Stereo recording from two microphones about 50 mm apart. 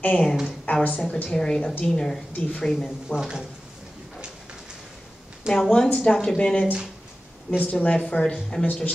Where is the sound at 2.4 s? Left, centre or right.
Left.